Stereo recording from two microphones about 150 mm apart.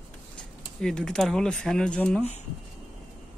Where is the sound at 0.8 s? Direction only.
5° left (ahead or behind).